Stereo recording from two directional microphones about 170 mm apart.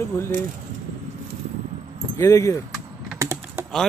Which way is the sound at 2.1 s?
20° left (ahead or behind).